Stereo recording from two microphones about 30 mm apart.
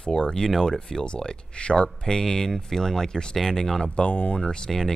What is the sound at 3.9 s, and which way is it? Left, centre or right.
Speech, left.